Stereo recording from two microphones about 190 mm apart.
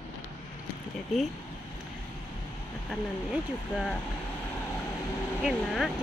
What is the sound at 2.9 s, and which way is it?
Speech, centre (ahead or behind).